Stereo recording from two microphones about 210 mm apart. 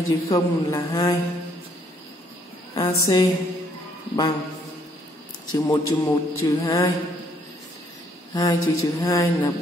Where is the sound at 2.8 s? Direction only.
15° left (ahead or behind).